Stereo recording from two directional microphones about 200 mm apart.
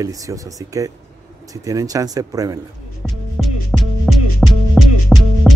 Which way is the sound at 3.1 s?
Centre (ahead or behind).